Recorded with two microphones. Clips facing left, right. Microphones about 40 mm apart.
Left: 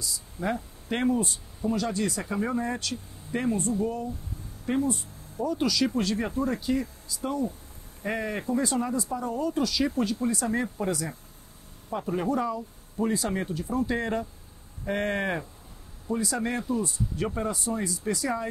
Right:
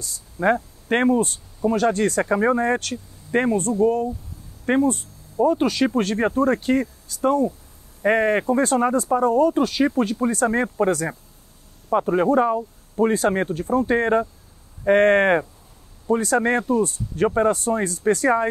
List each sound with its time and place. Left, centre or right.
0.0 s speech: right